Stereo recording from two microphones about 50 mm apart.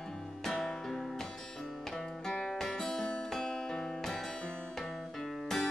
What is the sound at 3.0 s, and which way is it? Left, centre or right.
Music, centre.